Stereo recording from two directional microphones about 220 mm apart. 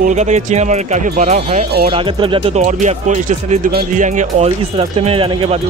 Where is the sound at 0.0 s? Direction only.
30° right (ahead or behind).